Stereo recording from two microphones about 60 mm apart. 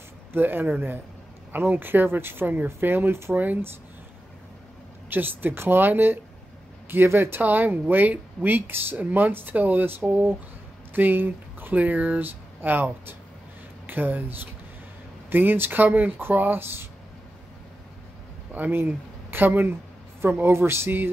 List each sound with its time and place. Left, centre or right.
0.3 s speech: right
3.3 s speech: right
5.1 s speech: right
18.5 s speech: right